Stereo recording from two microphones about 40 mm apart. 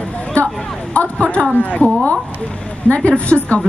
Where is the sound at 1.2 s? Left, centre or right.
Left.